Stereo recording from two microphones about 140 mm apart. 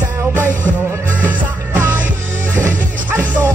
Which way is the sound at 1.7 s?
10° right (ahead or behind).